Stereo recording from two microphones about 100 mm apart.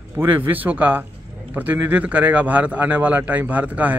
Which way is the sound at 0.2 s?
20° right (ahead or behind).